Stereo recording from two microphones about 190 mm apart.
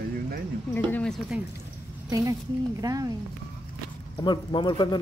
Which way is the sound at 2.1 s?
20° right (ahead or behind).